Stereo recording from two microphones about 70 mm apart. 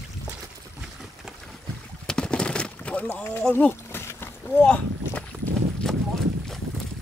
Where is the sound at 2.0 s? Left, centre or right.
Centre; by 4.3 s left.